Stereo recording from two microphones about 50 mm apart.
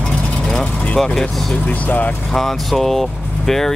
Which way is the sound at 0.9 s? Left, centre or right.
Centre.